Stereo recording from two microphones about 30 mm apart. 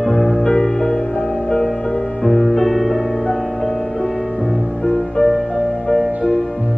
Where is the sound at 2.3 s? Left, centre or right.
Centre.